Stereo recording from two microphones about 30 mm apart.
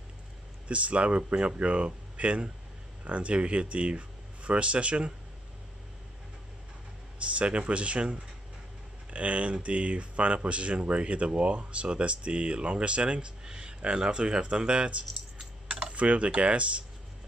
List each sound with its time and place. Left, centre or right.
0.7 s speech: right
7.2 s speech: right